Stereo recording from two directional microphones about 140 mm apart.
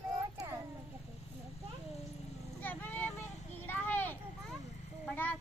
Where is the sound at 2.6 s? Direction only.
15° left (ahead or behind).